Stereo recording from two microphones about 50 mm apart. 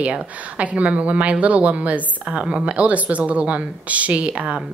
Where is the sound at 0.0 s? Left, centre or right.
Right.